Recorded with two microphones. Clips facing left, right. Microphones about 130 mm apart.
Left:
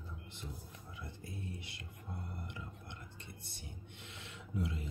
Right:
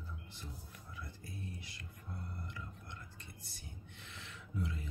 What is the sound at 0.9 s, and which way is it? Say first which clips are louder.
Music: left 1 dB; 25° left (ahead or behind).